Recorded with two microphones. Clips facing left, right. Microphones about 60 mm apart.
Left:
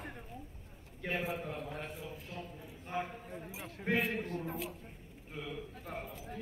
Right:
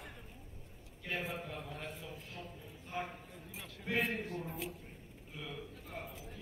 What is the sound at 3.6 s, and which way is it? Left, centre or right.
Speech, left.